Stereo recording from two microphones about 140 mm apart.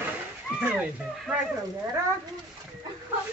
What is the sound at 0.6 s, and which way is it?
Speech, 5° right (ahead or behind).